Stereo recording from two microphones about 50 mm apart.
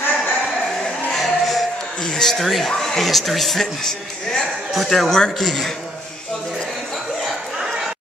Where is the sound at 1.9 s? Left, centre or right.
Centre.